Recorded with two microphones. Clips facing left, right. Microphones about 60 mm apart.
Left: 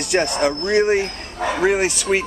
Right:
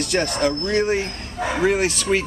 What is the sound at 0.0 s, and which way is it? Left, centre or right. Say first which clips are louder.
Speech: left 2 dB; centre.